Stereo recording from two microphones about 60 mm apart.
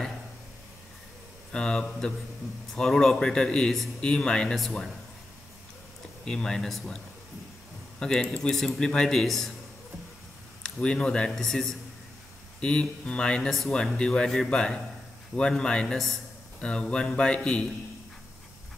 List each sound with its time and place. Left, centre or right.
1.5 s speech: centre
6.2 s speech: centre
8.0 s speech: centre
10.6 s speech: centre
12.5 s speech: centre